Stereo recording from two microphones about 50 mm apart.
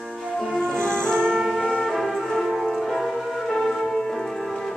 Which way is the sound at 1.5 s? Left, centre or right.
Centre.